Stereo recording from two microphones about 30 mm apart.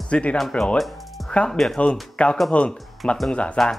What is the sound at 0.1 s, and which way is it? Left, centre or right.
Speech, left.